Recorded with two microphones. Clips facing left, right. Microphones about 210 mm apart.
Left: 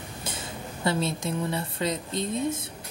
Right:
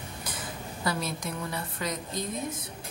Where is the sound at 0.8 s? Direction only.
25° left (ahead or behind).